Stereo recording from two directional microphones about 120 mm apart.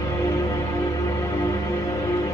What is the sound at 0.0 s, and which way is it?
Music, 25° left (ahead or behind).